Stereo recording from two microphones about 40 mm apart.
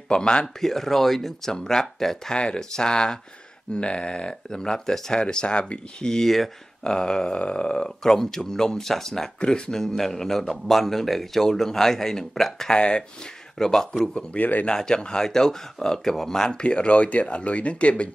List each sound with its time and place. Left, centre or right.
0.1 s speech: left
0.6 s speech: centre
2.3 s speech: left
5.2 s speech: left
13.6 s speech: centre
14.4 s speech: left
14.7 s speech: centre
16.6 s speech: left